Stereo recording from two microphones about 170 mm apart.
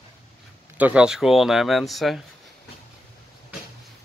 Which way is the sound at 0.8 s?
5° right (ahead or behind).